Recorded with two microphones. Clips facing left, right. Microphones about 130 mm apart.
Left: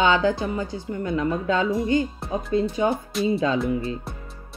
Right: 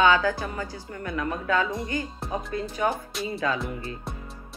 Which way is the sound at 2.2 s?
Centre (ahead or behind).